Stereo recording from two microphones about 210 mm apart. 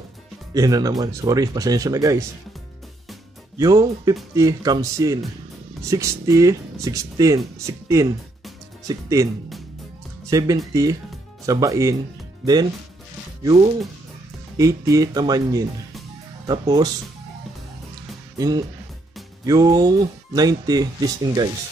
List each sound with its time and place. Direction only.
0.6 s speech: 15° right (ahead or behind)
3.5 s speech: 15° right (ahead or behind)
10.3 s speech: 15° right (ahead or behind)
13.4 s speech: 20° right (ahead or behind)
19.4 s speech: 15° right (ahead or behind)